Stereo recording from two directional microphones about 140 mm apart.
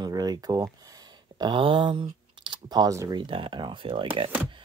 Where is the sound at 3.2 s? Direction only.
40° right (ahead or behind).